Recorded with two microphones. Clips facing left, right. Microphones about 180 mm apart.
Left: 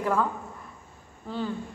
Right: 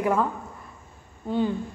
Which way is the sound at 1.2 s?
20° right (ahead or behind).